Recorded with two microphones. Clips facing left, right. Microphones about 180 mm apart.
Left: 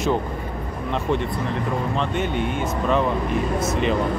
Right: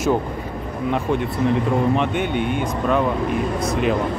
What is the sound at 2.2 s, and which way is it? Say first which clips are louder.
Speech: right 2 dB; 60° right (ahead or behind).